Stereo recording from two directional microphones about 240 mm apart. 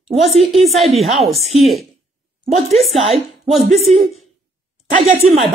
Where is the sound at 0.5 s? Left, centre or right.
Centre.